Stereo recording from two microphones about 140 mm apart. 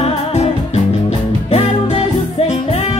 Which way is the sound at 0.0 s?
50° left (ahead or behind).